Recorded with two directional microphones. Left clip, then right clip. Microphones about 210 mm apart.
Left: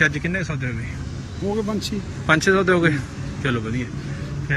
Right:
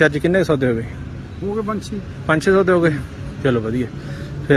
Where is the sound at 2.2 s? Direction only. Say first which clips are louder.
Right 2 dB; 20° right (ahead or behind).